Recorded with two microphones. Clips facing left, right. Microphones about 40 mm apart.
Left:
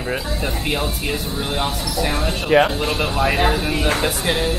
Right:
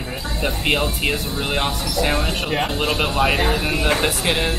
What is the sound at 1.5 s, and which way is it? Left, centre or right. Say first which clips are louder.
Speech: right 1 dB; right.